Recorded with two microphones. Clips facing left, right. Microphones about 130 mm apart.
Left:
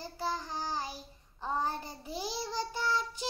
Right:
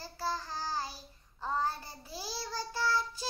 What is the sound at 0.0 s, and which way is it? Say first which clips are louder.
Child singing: left 1 dB; 15° left (ahead or behind).